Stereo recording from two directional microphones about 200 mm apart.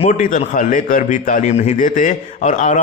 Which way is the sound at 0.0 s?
40° left (ahead or behind).